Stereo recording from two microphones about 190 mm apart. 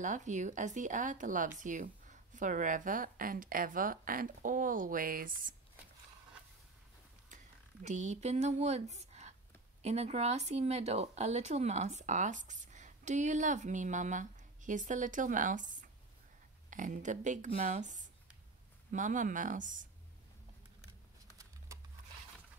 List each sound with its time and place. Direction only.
0.0 s a woman's voice: 40° right (ahead or behind)
7.8 s a woman's voice: 40° right (ahead or behind)